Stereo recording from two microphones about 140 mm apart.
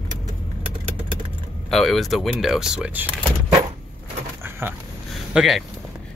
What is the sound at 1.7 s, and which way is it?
Speech, centre (ahead or behind).